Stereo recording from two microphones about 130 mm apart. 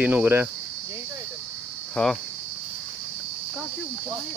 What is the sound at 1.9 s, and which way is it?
Speech, 5° left (ahead or behind).